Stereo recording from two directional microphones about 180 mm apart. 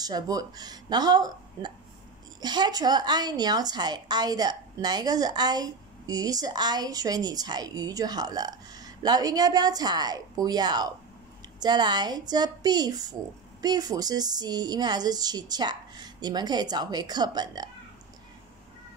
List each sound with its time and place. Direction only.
0.0 s a woman's voice: 20° right (ahead or behind)